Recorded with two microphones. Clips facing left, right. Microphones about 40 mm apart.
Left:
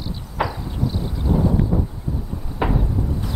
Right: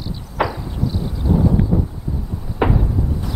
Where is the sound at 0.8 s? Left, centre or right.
Centre.